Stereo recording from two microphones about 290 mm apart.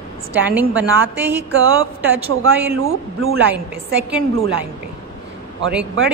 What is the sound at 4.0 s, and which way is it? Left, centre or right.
Speech, centre.